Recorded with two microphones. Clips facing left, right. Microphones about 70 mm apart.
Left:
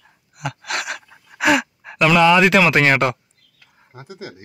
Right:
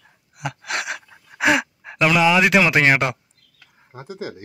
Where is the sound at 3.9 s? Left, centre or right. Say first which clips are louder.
Right 4 dB; right.